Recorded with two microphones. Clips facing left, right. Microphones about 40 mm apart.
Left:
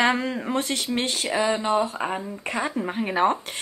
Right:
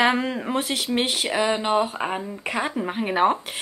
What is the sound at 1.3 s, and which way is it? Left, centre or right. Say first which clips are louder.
Speech: even; right.